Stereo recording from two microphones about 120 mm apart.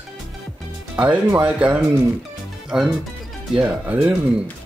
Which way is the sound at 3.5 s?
10° right (ahead or behind).